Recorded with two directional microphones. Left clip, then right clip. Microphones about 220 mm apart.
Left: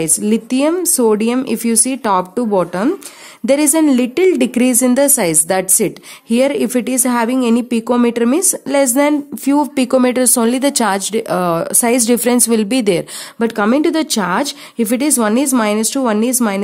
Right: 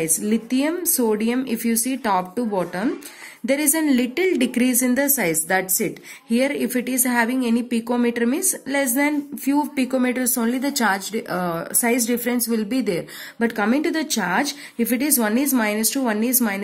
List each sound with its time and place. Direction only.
0.0 s a woman's voice: 50° left (ahead or behind)